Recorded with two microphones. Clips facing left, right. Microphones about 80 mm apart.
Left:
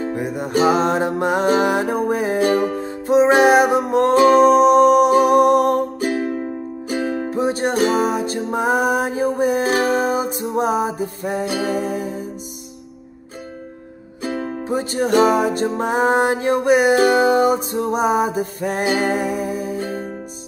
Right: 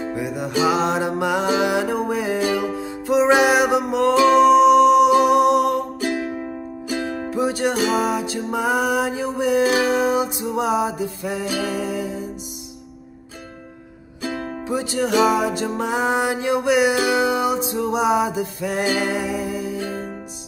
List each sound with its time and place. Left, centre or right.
0.0 s music: left
14.2 s music: left